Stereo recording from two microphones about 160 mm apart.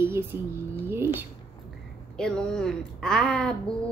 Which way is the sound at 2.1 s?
5° left (ahead or behind).